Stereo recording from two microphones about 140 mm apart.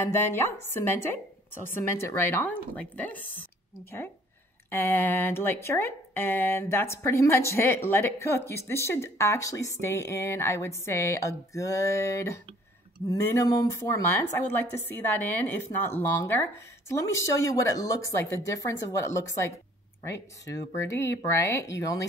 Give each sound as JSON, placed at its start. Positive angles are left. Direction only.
{"t": 0.0, "sound": "speech", "side_deg": 20}
{"t": 4.6, "sound": "speech", "side_deg": 15}